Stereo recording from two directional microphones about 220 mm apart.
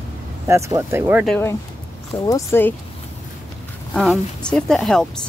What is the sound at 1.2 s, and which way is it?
Speech, 5° left (ahead or behind).